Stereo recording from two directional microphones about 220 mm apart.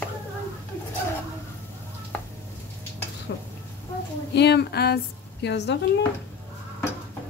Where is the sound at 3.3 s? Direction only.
55° left (ahead or behind).